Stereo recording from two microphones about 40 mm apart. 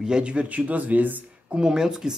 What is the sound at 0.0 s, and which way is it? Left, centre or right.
Speech, right.